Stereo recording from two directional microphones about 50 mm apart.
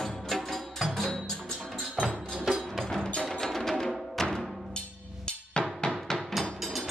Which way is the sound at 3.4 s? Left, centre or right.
Centre.